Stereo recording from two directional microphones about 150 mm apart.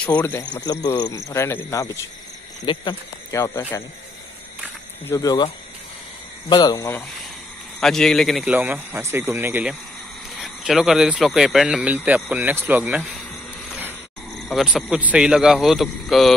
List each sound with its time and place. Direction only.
0.0 s speech: 10° left (ahead or behind)
0.4 s speech: 25° left (ahead or behind)
1.1 s speech: 15° left (ahead or behind)
2.6 s speech: 30° left (ahead or behind)
3.3 s speech: 20° left (ahead or behind)
5.0 s speech: 25° left (ahead or behind)
6.5 s speech: 25° left (ahead or behind)
7.8 s a man's voice: 5° left (ahead or behind)
8.5 s speech: 10° right (ahead or behind)
13.7 s a sound: 10° right (ahead or behind)
14.5 s a man's voice: centre (ahead or behind)